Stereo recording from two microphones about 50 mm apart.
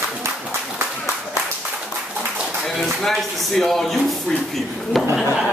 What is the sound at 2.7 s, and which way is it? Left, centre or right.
Speech, centre.